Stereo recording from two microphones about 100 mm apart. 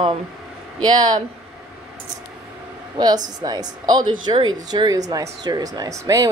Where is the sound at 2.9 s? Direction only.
45° right (ahead or behind).